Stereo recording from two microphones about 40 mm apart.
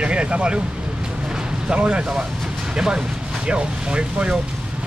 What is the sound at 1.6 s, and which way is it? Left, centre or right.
Speech, right.